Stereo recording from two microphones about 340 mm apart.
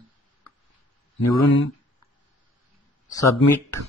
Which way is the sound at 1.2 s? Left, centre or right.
Left.